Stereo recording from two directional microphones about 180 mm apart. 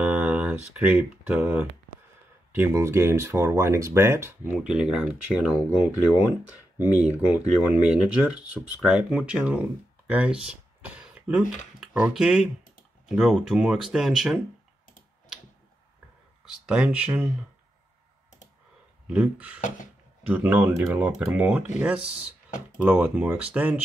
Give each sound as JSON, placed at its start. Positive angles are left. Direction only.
{"t": 0.0, "sound": "speech", "side_deg": -10}
{"t": 7.2, "sound": "speech", "side_deg": 15}
{"t": 7.9, "sound": "speech", "side_deg": -5}
{"t": 16.4, "sound": "speech", "side_deg": -5}
{"t": 19.0, "sound": "speech", "side_deg": -5}